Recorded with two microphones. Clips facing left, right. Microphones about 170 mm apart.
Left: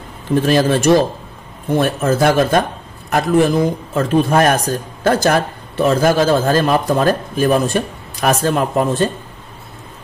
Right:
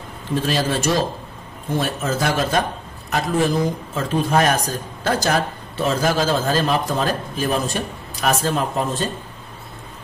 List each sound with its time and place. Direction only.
0.5 s a man's voice: 55° left (ahead or behind)